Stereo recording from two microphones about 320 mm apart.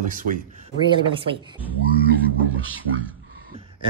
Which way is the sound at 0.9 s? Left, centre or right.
Centre.